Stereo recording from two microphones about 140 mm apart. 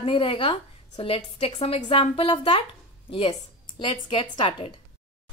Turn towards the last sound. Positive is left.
turn(degrees=35)  # may be behind; listen again after turning